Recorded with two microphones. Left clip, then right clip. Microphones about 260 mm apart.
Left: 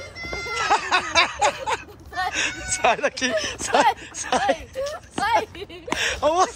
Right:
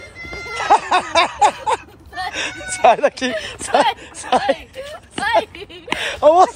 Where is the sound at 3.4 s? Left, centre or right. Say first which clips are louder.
Right 4 dB; centre.